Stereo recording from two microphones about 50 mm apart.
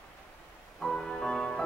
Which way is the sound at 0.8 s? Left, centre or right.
Centre.